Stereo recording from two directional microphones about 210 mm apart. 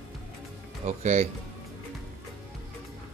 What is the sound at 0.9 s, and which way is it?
Speech, 30° right (ahead or behind).